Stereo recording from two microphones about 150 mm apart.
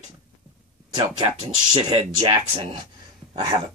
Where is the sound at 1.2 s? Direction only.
35° right (ahead or behind).